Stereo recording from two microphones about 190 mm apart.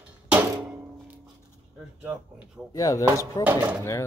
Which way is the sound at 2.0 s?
5° right (ahead or behind).